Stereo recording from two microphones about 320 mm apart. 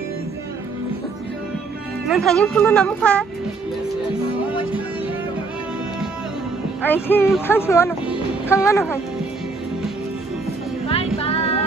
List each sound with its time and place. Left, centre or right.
2.0 s speech: centre
6.8 s speech: centre
11.1 s child singing: centre